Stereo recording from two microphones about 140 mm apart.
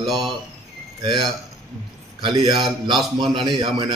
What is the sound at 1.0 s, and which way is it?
A man's voice, 30° right (ahead or behind).